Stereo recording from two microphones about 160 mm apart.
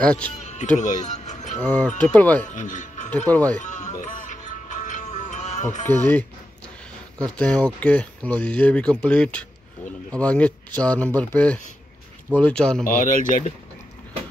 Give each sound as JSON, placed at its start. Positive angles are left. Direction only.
{"t": 0.0, "sound": "speech", "side_deg": 5}
{"t": 0.7, "sound": "music", "side_deg": 50}
{"t": 1.6, "sound": "speech", "side_deg": 10}
{"t": 2.4, "sound": "speech", "side_deg": 50}
{"t": 3.1, "sound": "speech", "side_deg": 10}
{"t": 3.6, "sound": "music", "side_deg": 50}
{"t": 5.9, "sound": "speech", "side_deg": 10}
{"t": 7.3, "sound": "speech", "side_deg": 5}
{"t": 12.8, "sound": "speech", "side_deg": 55}